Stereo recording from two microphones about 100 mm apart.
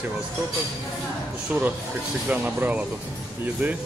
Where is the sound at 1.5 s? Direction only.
15° right (ahead or behind).